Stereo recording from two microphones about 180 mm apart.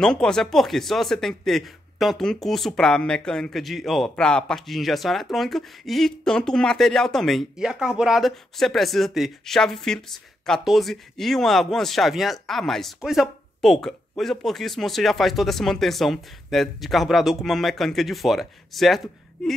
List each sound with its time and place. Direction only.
0.0 s speech: 5° left (ahead or behind)